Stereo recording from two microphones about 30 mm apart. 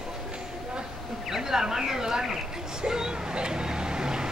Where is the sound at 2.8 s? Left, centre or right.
Right.